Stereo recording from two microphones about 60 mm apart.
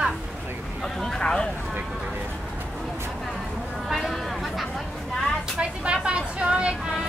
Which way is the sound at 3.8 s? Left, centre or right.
Centre.